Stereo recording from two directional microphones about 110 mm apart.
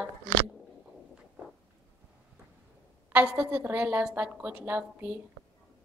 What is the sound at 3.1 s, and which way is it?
A woman's voice, 15° right (ahead or behind).